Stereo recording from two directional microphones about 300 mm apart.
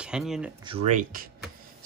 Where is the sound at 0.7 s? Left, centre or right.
Right.